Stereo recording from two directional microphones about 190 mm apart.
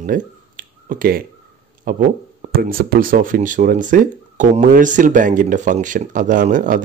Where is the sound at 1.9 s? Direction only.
45° right (ahead or behind).